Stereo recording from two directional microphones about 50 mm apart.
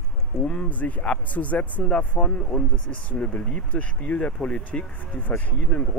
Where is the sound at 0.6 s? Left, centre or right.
Left.